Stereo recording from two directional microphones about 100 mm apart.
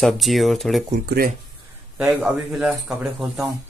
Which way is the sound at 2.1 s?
5° right (ahead or behind).